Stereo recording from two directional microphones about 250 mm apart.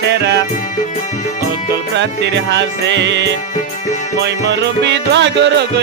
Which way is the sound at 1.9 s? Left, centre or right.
Right.